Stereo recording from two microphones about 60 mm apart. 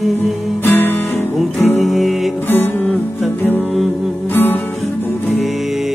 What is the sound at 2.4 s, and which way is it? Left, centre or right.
Music, left.